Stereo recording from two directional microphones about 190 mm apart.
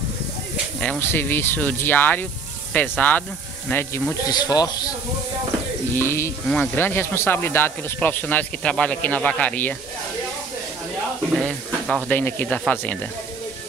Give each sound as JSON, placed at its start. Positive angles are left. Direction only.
{"t": 0.7, "sound": "speech", "side_deg": 10}
{"t": 5.9, "sound": "speech", "side_deg": 10}
{"t": 11.3, "sound": "speech", "side_deg": 5}